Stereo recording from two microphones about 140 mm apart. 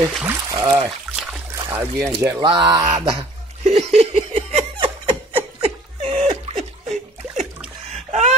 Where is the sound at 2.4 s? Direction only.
35° right (ahead or behind).